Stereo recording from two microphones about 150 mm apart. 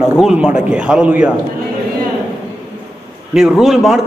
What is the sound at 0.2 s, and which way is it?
A man's voice, 5° right (ahead or behind).